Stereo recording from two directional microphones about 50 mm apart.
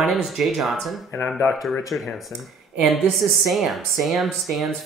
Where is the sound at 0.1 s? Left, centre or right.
Centre.